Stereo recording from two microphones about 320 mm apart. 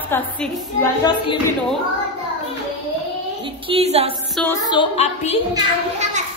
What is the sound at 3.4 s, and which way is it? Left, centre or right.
Speech, centre.